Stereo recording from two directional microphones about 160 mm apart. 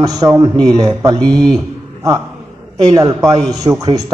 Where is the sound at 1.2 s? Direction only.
5° left (ahead or behind).